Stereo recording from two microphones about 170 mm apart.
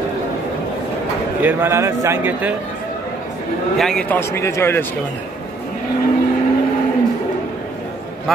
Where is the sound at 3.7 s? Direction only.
5° left (ahead or behind).